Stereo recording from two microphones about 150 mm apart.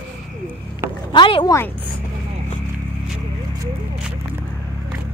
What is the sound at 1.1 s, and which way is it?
Speech, 35° left (ahead or behind).